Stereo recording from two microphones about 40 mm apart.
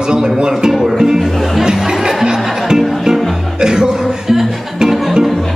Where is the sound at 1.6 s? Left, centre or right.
Centre.